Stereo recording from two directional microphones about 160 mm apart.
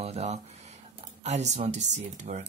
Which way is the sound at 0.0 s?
40° right (ahead or behind).